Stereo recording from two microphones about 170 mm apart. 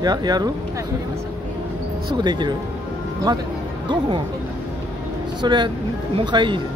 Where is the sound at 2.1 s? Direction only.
25° right (ahead or behind).